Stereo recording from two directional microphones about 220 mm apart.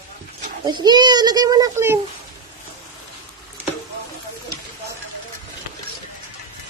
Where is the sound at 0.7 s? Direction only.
20° right (ahead or behind).